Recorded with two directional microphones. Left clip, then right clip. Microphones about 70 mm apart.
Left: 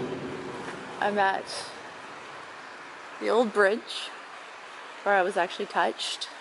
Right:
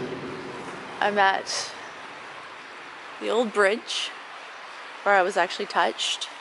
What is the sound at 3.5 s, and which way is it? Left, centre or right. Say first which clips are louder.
Speech: right 1 dB; centre.